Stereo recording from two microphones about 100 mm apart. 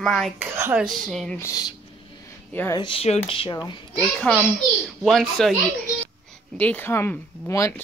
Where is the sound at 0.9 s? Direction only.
Centre (ahead or behind).